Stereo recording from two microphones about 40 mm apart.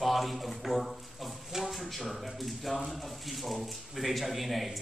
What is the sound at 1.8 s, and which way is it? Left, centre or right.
Speech, centre.